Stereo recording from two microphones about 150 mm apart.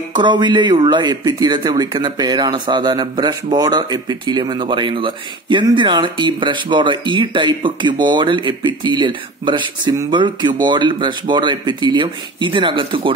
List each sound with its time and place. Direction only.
0.1 s speech: 30° right (ahead or behind)